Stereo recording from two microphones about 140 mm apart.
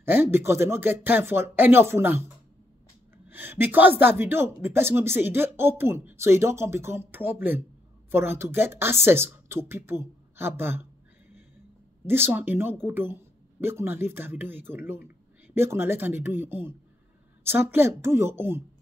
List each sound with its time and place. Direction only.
0.0 s speech: 15° right (ahead or behind)
12.1 s speech: 15° right (ahead or behind)